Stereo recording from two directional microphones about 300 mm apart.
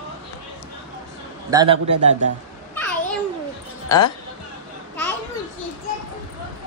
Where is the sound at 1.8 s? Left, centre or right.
Right.